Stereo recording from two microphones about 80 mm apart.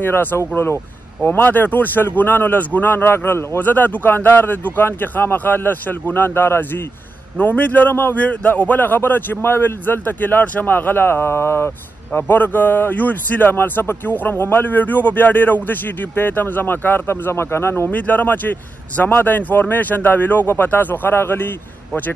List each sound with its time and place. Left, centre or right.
0.0 s a man's voice: left